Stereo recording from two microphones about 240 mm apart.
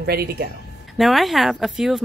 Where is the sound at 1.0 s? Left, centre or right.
Centre.